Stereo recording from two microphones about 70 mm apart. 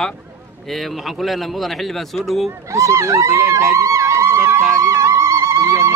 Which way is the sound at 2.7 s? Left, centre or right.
Right.